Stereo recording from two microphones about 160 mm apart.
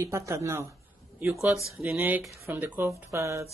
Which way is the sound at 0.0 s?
20° right (ahead or behind).